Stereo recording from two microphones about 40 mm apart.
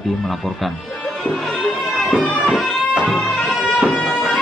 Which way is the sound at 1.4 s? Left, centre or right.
Centre.